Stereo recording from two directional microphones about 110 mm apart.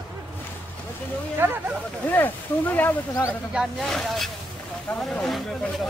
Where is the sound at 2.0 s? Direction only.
15° left (ahead or behind).